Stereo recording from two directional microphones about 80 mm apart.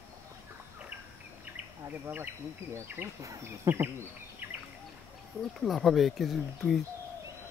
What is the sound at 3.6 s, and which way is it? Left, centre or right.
Speech, right.